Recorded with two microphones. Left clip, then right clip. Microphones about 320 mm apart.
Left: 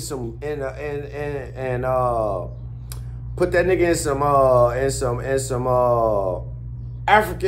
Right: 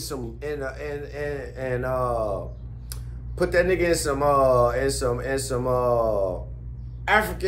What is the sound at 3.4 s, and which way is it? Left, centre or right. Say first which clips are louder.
Speech: left 3 dB; centre.